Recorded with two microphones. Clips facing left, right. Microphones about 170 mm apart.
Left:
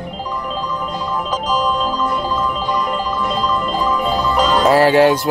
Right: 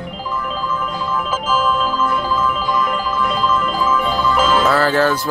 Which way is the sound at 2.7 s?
35° left (ahead or behind).